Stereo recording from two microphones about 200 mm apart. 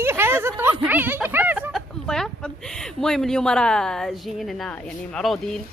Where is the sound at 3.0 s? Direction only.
Centre (ahead or behind).